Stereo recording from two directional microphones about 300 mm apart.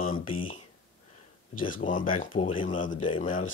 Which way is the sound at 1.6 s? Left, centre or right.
Left.